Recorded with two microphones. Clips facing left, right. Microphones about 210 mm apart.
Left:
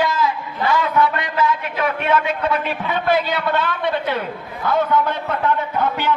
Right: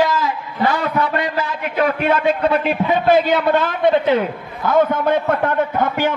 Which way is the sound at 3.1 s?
45° right (ahead or behind).